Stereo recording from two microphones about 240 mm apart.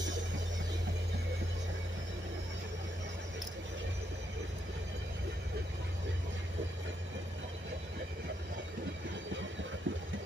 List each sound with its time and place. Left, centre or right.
9.9 s vehicle: right